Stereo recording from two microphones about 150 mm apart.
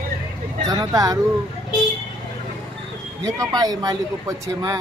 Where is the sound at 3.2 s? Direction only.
25° right (ahead or behind).